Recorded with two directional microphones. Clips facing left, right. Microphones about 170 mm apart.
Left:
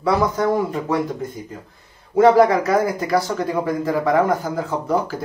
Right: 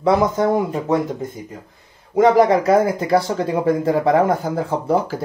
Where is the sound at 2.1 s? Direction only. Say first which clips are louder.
Even; 20° right (ahead or behind).